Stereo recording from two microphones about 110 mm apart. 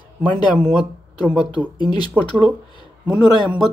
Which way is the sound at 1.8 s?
40° left (ahead or behind).